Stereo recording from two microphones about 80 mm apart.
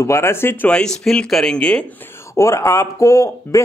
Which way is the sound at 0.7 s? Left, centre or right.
Centre.